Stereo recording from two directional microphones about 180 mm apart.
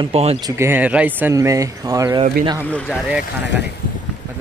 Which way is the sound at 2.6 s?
5° left (ahead or behind).